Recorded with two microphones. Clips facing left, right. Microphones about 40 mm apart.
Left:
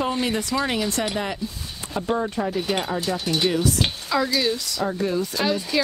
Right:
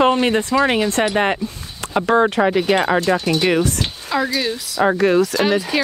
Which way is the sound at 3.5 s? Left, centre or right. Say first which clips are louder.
Right 5 dB; right.